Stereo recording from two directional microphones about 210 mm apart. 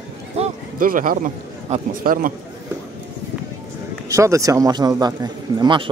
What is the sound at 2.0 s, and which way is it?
Speech, 40° right (ahead or behind).